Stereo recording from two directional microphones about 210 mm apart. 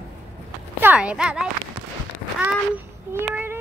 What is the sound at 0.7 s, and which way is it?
Speech, 10° right (ahead or behind).